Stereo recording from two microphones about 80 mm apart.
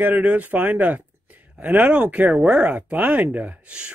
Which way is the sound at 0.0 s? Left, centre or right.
Right.